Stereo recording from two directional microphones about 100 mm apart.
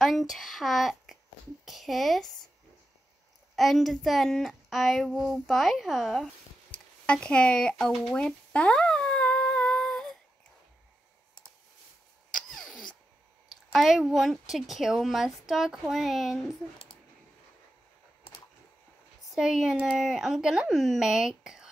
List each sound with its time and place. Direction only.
0.0 s a child's voice: centre (ahead or behind)
3.5 s speech: centre (ahead or behind)
6.7 s a sound: 10° left (ahead or behind)
12.3 s a sound: 5° left (ahead or behind)
13.7 s speech: centre (ahead or behind)
19.3 s speech: 5° right (ahead or behind)